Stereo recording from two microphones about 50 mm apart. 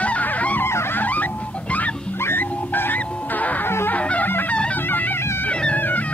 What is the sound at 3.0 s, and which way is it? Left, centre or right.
Music, left.